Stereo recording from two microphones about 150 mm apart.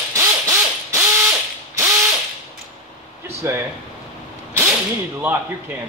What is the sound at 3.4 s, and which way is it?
Speech, 15° right (ahead or behind).